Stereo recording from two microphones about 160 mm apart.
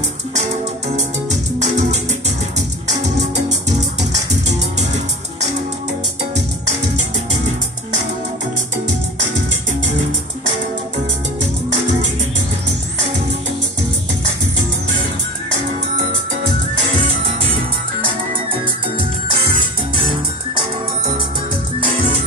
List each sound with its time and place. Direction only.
1.6 s music: 45° right (ahead or behind)
3.4 s music: 45° right (ahead or behind)
18.5 s music: 35° right (ahead or behind)